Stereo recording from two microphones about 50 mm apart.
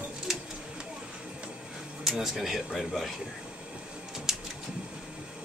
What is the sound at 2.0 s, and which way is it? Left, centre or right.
Speech, centre.